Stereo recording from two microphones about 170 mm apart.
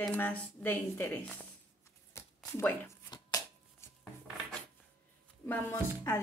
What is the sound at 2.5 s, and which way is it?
Speech, 10° left (ahead or behind).